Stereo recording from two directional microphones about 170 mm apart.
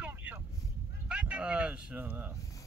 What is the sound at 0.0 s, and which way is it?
Vehicle, 10° right (ahead or behind).